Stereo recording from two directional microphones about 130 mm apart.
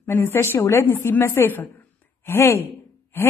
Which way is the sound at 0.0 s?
20° left (ahead or behind).